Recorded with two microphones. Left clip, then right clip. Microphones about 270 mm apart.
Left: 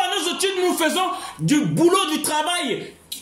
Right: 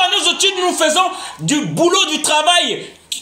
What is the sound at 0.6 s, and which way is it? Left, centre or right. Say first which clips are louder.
A man's voice: right 6 dB; left.